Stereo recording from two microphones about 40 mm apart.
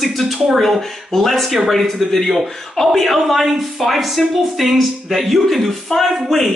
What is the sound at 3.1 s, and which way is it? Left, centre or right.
Speech, centre.